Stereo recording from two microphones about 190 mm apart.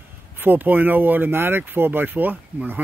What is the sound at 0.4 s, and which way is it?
Speech, 10° right (ahead or behind).